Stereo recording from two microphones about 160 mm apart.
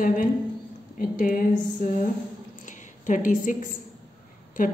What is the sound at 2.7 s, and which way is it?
A woman's voice, 50° left (ahead or behind).